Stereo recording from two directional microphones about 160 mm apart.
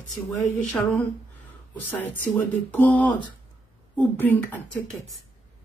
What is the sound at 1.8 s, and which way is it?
A woman's voice, 10° left (ahead or behind).